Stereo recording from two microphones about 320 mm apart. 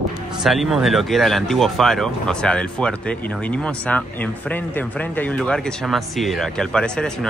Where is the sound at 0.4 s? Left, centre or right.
Centre.